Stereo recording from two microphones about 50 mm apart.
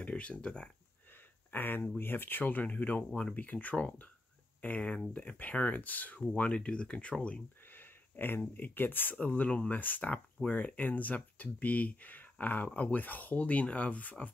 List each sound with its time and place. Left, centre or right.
0.0 s speech: left
1.5 s speech: left
7.7 s speech: left
9.2 s speech: left